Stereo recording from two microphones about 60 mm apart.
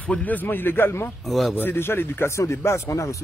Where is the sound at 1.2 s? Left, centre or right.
Centre.